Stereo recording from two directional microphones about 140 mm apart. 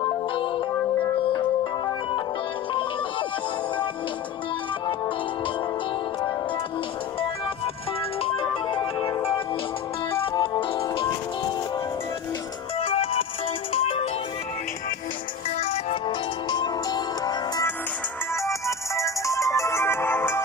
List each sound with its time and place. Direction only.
8.2 s music: 40° left (ahead or behind)
12.7 s music: 45° left (ahead or behind)
15.6 s music: 45° left (ahead or behind); by 20.4 s 15° left (ahead or behind)